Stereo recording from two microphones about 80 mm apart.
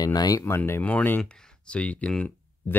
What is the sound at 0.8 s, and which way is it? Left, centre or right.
Speech, centre.